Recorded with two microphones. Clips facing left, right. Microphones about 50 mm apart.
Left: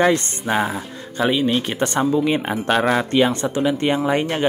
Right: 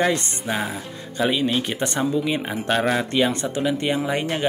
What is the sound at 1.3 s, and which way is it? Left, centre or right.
Speech, centre.